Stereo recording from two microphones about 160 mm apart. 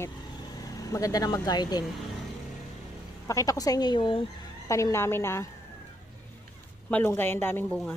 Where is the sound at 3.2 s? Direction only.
20° left (ahead or behind).